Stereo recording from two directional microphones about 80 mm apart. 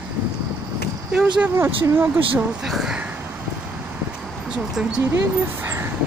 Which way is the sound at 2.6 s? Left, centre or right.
Centre.